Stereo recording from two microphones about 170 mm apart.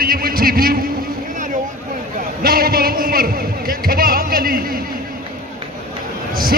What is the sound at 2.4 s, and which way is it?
A man's voice, 60° right (ahead or behind).